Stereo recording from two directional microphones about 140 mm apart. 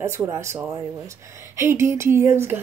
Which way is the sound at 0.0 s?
20° right (ahead or behind).